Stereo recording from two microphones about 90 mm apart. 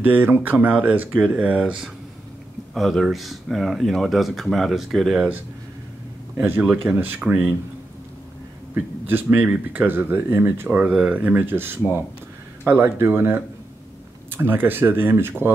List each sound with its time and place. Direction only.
0.0 s speech: 20° right (ahead or behind)
2.7 s speech: 5° left (ahead or behind)
6.3 s a man's voice: 25° right (ahead or behind)
6.6 s speech: 15° right (ahead or behind)
8.7 s speech: 20° right (ahead or behind)
10.9 s speech: 10° right (ahead or behind); by 15.5 s 25° right (ahead or behind)